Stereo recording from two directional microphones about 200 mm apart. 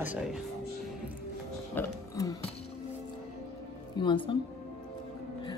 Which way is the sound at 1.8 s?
15° left (ahead or behind).